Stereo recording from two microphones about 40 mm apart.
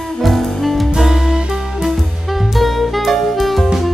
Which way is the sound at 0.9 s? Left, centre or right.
Centre.